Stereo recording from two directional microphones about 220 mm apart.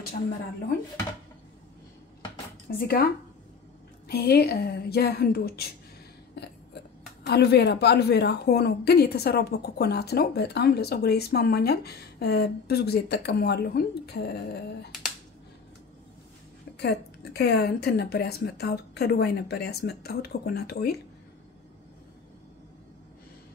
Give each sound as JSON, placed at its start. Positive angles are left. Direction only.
{"t": 2.8, "sound": "a woman's voice", "side_deg": 45}
{"t": 4.1, "sound": "a woman's voice", "side_deg": 45}
{"t": 6.3, "sound": "a sound", "side_deg": 50}
{"t": 7.2, "sound": "a woman's voice", "side_deg": 50}
{"t": 16.7, "sound": "a woman's voice", "side_deg": 50}